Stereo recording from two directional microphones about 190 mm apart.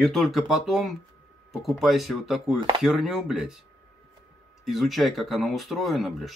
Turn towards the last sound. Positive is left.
turn(degrees=0)  # may be behind; listen again after turning